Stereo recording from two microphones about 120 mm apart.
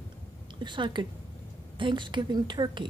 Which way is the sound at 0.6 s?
40° right (ahead or behind).